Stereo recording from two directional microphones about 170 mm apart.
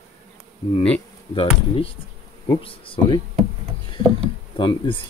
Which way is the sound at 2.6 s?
30° left (ahead or behind).